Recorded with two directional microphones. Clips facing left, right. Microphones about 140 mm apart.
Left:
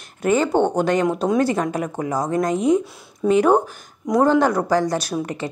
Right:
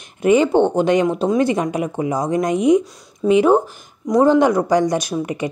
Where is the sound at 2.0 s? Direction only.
10° right (ahead or behind).